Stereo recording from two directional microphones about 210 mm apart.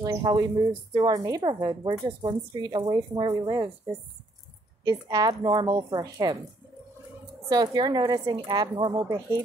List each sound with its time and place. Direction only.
0.0 s a woman's voice: 20° right (ahead or behind)
7.4 s a woman's voice: 20° right (ahead or behind)